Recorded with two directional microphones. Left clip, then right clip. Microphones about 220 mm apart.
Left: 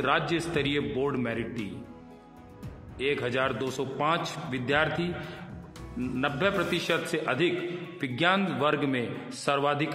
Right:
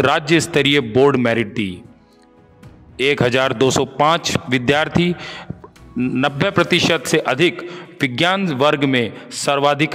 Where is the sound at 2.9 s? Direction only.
45° right (ahead or behind).